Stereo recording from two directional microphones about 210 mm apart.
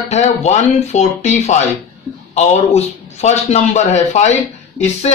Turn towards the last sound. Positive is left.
turn(degrees=30)  # may be behind; listen again after turning